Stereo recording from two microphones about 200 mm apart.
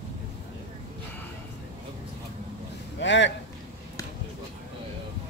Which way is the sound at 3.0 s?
65° left (ahead or behind).